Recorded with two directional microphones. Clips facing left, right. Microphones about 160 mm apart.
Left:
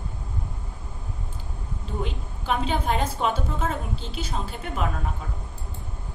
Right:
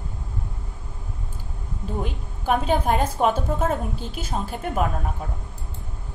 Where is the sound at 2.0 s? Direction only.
50° right (ahead or behind).